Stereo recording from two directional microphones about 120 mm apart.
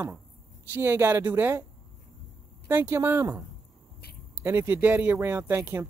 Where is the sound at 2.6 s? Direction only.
20° right (ahead or behind).